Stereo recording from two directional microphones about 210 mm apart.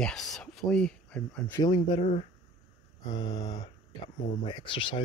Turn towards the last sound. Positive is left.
turn(degrees=25)  # may be behind; listen again after turning